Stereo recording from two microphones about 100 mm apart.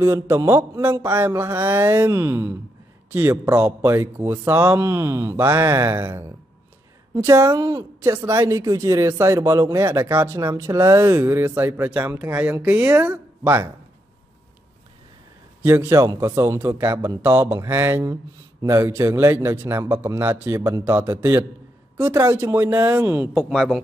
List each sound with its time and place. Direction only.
0.0 s speech: 30° right (ahead or behind)
15.6 s speech: 25° right (ahead or behind)
23.3 s speech: centre (ahead or behind)